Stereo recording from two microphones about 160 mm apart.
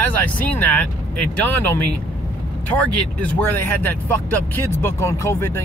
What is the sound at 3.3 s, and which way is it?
Speech, 10° left (ahead or behind).